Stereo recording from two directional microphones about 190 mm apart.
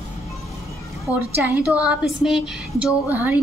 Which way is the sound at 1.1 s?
15° left (ahead or behind).